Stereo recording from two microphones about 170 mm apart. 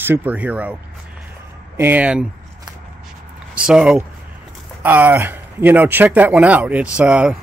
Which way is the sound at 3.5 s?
5° right (ahead or behind).